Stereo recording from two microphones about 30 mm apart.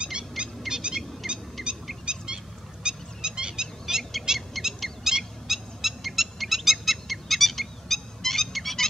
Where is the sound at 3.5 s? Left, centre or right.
Centre.